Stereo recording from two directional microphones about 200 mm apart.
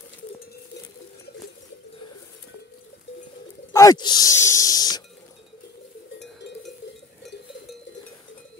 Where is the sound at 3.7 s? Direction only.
15° left (ahead or behind).